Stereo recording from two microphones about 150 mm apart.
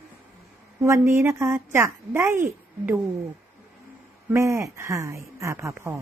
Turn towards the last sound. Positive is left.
turn(degrees=-20)  # may be behind; listen again after turning